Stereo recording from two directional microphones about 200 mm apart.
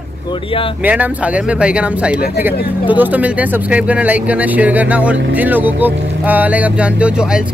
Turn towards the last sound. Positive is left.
turn(degrees=-5)  # may be behind; listen again after turning